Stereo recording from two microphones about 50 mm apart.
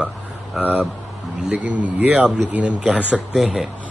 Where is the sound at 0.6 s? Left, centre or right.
Right.